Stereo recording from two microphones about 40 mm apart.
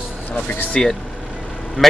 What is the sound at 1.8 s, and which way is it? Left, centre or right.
Speech, centre.